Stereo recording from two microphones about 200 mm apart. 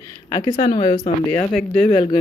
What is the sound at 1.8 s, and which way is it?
Speech, 25° left (ahead or behind).